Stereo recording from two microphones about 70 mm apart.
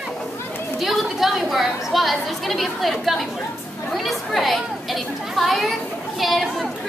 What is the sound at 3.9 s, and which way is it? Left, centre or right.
Chatter, centre.